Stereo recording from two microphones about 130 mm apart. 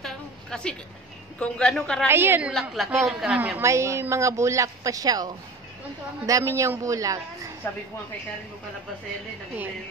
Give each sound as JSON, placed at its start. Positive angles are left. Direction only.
{"t": 0.0, "sound": "a sound", "side_deg": 5}
{"t": 1.4, "sound": "a man's voice", "side_deg": 5}
{"t": 2.0, "sound": "a woman's voice", "side_deg": -20}
{"t": 2.5, "sound": "a man's voice", "side_deg": 0}